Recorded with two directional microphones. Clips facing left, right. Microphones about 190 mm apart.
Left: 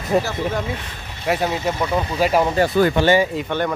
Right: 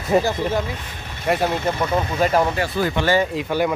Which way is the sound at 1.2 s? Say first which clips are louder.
Even; centre (ahead or behind).